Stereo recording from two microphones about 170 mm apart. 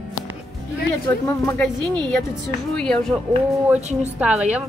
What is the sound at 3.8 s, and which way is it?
Speech, 40° right (ahead or behind).